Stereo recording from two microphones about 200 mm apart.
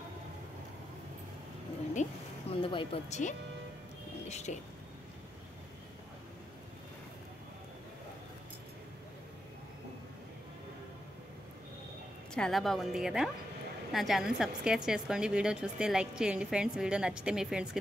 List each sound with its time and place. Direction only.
2.0 s speech: 35° left (ahead or behind)
2.5 s speech: 25° left (ahead or behind)
12.4 s a woman's voice: centre (ahead or behind)